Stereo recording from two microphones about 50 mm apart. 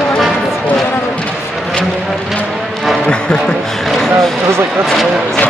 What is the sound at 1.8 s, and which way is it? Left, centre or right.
Vehicle, centre.